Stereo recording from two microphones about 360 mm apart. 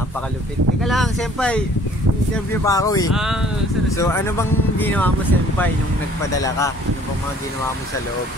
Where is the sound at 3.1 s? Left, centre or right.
Centre.